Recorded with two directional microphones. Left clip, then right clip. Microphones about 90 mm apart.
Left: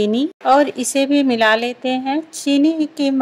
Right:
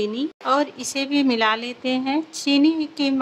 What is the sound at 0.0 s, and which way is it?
Speech, 30° left (ahead or behind).